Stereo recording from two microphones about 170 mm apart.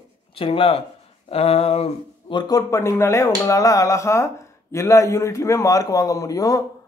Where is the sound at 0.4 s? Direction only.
35° left (ahead or behind).